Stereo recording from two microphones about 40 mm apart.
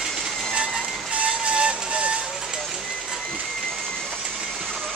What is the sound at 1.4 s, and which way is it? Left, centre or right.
Vehicle, right.